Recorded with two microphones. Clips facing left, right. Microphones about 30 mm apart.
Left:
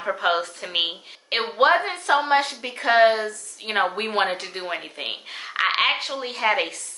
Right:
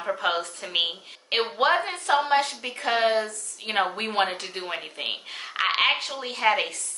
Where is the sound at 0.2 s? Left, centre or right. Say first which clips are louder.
Left 4 dB; centre.